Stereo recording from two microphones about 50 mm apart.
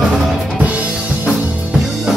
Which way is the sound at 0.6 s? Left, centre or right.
Right.